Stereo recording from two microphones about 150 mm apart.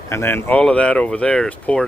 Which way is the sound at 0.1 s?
15° left (ahead or behind).